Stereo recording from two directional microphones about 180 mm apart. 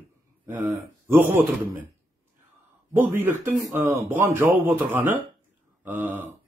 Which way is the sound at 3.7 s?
15° right (ahead or behind).